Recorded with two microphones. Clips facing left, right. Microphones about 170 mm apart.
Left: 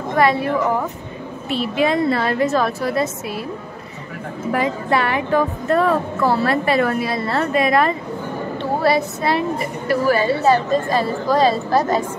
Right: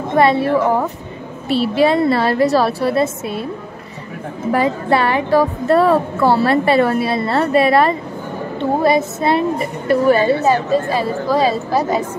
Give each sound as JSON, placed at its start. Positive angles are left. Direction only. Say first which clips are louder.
{"t": 0.1, "sound": "a woman's voice", "louder": "right 4 dB", "side_deg": -25}
{"t": 4.5, "sound": "speech", "louder": "right 4 dB", "side_deg": -30}
{"t": 8.8, "sound": "a woman's voice", "louder": "right 2 dB", "side_deg": -20}
{"t": 10.4, "sound": "a woman's voice", "louder": "right 1 dB", "side_deg": -10}